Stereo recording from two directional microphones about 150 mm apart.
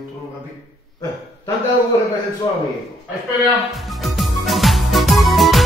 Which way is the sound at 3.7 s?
Centre (ahead or behind).